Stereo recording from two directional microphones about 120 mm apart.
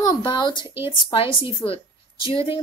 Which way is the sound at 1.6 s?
50° left (ahead or behind).